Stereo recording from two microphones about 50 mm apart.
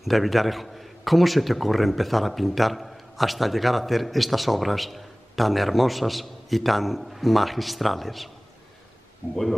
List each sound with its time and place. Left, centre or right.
0.0 s a man's voice: centre